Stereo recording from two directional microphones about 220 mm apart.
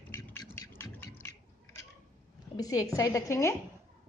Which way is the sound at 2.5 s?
15° left (ahead or behind).